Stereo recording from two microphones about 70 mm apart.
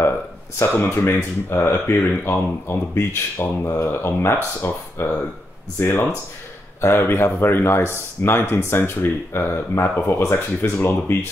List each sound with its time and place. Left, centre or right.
0.6 s speech: left